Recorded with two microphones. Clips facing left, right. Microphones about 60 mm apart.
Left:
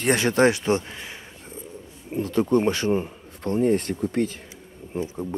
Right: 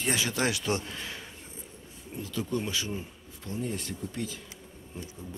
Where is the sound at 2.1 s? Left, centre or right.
Left.